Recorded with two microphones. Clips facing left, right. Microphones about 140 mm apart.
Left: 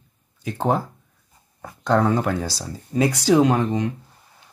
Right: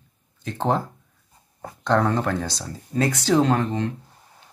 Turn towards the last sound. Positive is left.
turn(degrees=15)  # may be behind; listen again after turning